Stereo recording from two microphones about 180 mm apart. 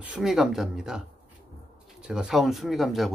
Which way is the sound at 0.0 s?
5° right (ahead or behind).